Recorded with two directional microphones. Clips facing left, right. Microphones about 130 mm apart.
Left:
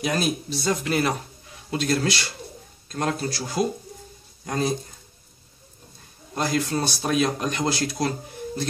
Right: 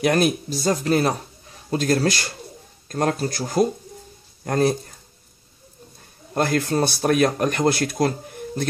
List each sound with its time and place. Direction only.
0.0 s speech: 55° right (ahead or behind)
6.3 s speech: 55° right (ahead or behind)